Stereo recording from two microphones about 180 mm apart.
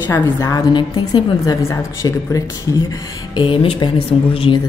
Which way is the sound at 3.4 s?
30° left (ahead or behind).